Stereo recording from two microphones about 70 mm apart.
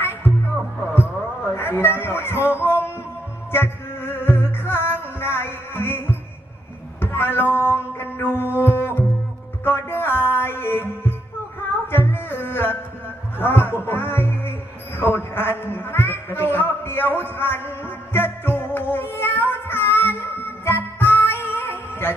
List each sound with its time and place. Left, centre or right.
1.5 s a man's voice: left
3.5 s music: left
15.0 s a sound: left